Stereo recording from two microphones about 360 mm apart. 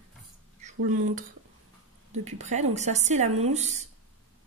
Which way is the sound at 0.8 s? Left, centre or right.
Right.